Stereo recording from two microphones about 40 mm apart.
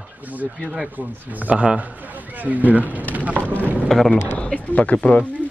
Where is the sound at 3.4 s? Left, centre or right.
Left.